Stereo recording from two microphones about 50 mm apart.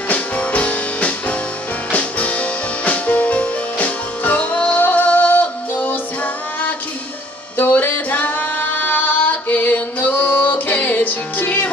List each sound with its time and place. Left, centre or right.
0.1 s music: left
7.5 s singing: left